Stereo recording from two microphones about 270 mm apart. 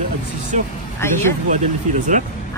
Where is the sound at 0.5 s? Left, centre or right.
Right.